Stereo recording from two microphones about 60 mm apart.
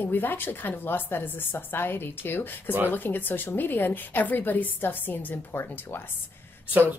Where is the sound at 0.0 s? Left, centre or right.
Left.